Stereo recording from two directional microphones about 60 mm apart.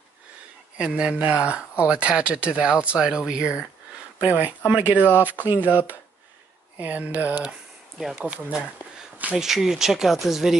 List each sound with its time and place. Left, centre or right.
0.7 s speech: centre
4.2 s speech: right
9.3 s speech: centre